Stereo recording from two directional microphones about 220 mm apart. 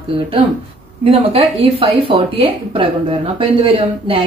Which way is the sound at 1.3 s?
25° right (ahead or behind).